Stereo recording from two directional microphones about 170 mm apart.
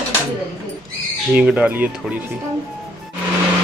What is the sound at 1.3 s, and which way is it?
Speech, 5° right (ahead or behind).